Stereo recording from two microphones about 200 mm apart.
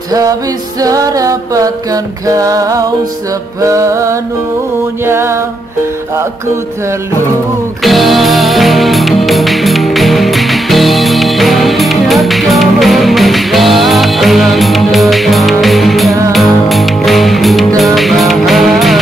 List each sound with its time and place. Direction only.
0.7 s music: 15° right (ahead or behind)
7.8 s music: centre (ahead or behind)